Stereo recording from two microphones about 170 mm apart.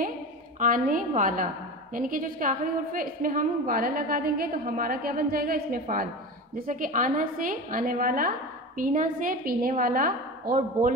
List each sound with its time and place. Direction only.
0.6 s a woman's voice: 50° right (ahead or behind)